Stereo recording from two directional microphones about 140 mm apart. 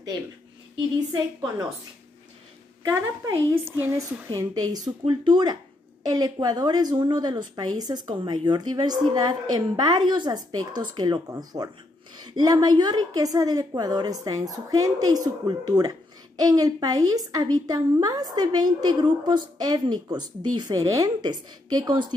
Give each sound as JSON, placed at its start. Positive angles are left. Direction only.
{"t": 0.9, "sound": "speech", "side_deg": -30}
{"t": 2.9, "sound": "a woman's voice", "side_deg": -15}